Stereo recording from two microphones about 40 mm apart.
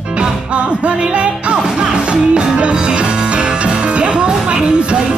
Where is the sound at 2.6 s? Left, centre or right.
Right.